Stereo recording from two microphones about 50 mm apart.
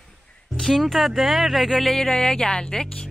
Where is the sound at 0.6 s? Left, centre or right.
Centre.